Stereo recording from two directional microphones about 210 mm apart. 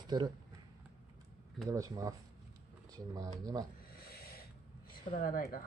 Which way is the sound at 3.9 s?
45° left (ahead or behind).